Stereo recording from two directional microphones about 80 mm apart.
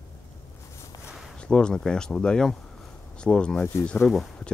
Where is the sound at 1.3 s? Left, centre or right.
Centre.